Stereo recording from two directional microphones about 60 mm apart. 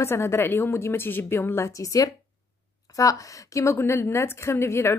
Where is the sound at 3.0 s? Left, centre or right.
Left.